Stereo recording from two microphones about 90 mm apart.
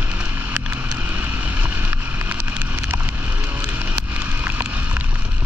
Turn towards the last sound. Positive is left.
turn(degrees=-20)  # may be behind; listen again after turning